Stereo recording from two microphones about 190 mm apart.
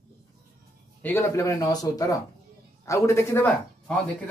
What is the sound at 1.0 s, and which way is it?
Speech, 10° left (ahead or behind).